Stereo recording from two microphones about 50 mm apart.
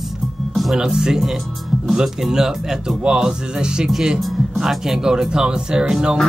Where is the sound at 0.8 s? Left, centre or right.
Centre.